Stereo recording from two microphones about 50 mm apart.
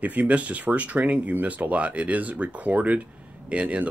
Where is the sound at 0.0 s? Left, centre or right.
Right.